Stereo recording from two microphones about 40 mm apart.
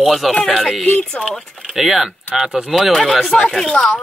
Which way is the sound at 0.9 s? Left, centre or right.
Left.